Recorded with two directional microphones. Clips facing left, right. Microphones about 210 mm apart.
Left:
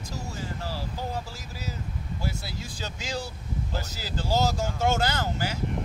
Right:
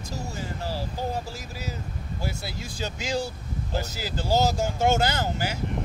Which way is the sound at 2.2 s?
15° right (ahead or behind).